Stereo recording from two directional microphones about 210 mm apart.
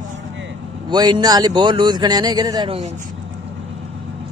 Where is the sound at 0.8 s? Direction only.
20° right (ahead or behind).